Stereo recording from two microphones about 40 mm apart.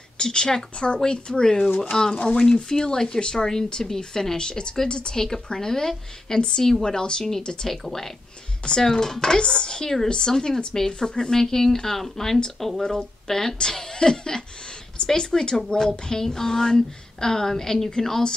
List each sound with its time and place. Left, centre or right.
0.2 s speech: left
8.6 s speech: centre